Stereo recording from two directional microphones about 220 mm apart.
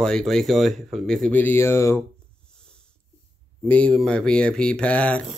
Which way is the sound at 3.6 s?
5° left (ahead or behind).